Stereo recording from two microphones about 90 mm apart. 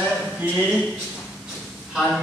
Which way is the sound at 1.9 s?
5° right (ahead or behind).